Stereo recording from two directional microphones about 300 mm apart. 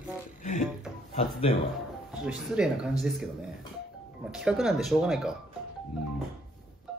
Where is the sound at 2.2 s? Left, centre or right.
Centre.